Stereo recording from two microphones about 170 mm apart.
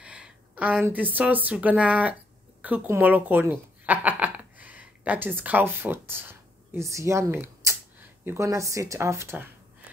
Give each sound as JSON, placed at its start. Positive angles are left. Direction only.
{"t": 0.0, "sound": "a woman's voice", "side_deg": -5}